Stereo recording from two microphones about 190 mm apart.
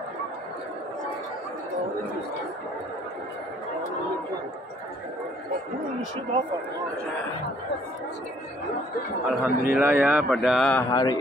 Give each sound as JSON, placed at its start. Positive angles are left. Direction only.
{"t": 9.3, "sound": "a man's voice", "side_deg": -5}
{"t": 10.8, "sound": "mantra", "side_deg": 20}